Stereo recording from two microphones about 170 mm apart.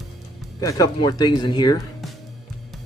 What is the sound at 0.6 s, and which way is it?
Speech, 20° left (ahead or behind).